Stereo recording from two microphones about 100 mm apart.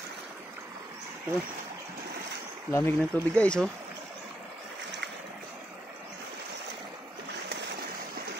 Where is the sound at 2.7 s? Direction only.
25° left (ahead or behind).